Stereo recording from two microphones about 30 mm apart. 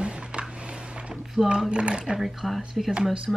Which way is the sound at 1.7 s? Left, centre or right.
Right.